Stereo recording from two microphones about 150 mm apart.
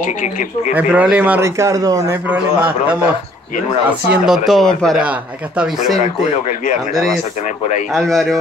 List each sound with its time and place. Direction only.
0.0 s speech: 60° left (ahead or behind)
0.7 s a man's voice: 10° right (ahead or behind)
2.2 s a man's voice: 10° right (ahead or behind)
4.1 s speech: centre (ahead or behind)